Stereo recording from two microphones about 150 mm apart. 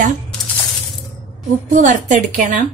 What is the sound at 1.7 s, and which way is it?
Stir, 60° right (ahead or behind).